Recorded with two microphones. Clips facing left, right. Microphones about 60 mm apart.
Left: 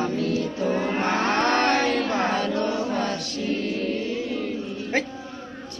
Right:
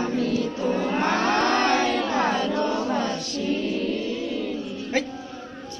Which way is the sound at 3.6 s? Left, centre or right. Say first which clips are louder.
Right 1 dB; left.